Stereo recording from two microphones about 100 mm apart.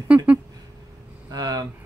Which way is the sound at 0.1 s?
15° right (ahead or behind).